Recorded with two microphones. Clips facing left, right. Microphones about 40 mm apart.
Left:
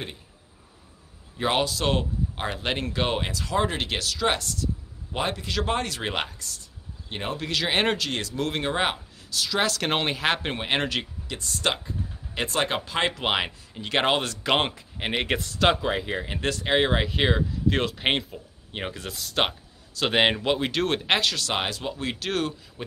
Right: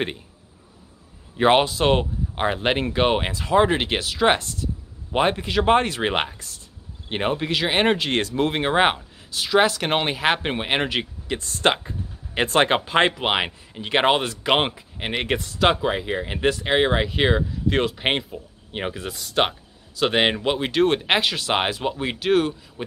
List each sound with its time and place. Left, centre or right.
1.4 s speech: right
7.3 s speech: right
7.6 s speech: centre
8.1 s speech: right
8.5 s speech: right
9.8 s speech: centre
11.2 s speech: right
13.1 s speech: centre